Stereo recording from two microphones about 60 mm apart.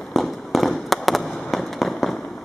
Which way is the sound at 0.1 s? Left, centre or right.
Centre.